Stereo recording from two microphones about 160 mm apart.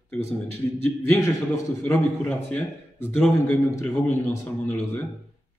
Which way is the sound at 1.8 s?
10° left (ahead or behind).